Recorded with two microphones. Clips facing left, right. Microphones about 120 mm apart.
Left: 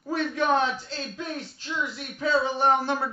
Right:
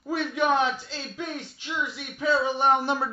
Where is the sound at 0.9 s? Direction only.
10° right (ahead or behind).